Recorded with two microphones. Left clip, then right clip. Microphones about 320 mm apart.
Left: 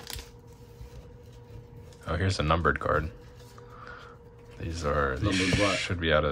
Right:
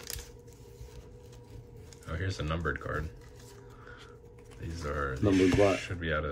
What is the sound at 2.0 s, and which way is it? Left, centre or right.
Speech, centre.